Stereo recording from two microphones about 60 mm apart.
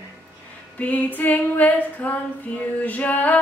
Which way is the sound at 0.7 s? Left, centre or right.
Left.